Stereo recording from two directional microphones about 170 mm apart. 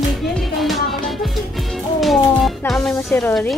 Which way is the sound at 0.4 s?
Centre (ahead or behind).